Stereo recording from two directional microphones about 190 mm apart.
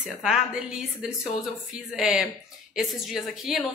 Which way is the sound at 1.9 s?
5° right (ahead or behind).